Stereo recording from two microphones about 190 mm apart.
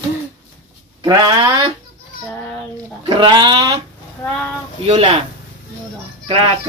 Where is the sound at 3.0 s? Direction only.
25° right (ahead or behind).